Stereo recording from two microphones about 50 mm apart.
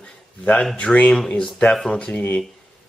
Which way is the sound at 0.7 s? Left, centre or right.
Left.